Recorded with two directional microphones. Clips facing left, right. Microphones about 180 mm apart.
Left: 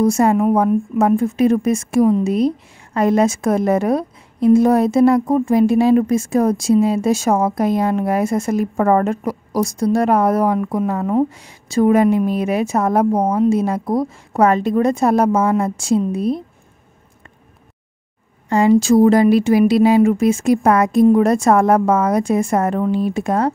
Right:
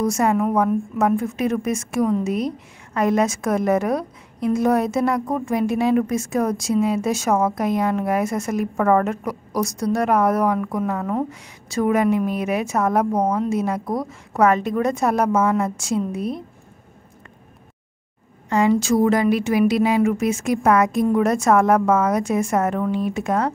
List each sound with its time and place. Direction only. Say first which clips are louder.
0.0 s a woman's voice: left 5 dB; 30° left (ahead or behind)
18.5 s speech: left 5 dB; 30° left (ahead or behind)